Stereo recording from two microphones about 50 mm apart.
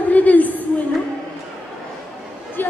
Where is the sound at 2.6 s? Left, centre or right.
Left.